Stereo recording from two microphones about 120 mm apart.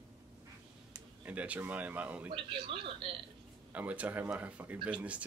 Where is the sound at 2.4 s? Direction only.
45° right (ahead or behind).